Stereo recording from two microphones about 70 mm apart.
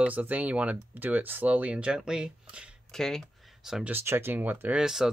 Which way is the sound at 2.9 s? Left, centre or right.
Centre.